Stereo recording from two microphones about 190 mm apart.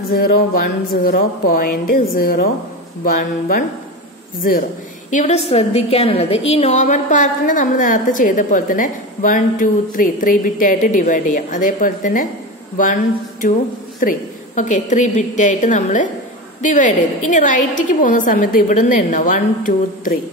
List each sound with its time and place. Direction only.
0.1 s a woman's voice: 55° left (ahead or behind)